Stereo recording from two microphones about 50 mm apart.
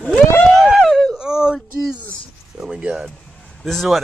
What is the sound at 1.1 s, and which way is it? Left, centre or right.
Speech, centre.